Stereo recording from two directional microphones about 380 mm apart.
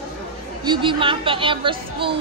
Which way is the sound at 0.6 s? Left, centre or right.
Centre.